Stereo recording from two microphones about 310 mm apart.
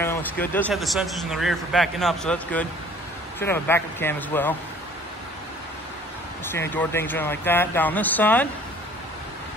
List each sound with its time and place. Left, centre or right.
0.0 s a man's voice: centre
6.4 s speech: centre